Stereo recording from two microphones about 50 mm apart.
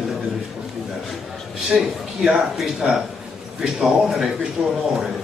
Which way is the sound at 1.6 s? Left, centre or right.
Centre.